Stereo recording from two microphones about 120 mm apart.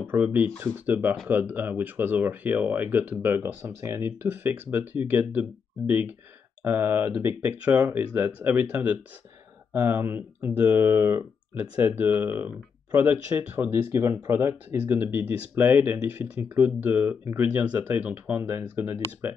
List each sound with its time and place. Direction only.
0.0 s speech: 15° right (ahead or behind)